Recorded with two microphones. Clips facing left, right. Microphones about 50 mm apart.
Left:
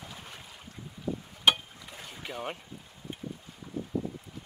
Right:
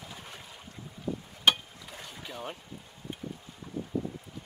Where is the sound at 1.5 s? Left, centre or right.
Centre.